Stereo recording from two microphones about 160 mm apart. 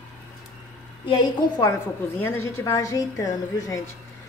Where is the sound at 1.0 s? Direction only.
30° left (ahead or behind).